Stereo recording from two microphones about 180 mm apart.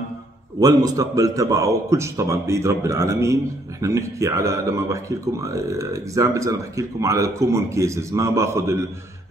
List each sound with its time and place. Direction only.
0.6 s speech: 20° right (ahead or behind)